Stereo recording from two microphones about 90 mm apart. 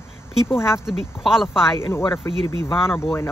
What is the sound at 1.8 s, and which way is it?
Speech, 30° left (ahead or behind).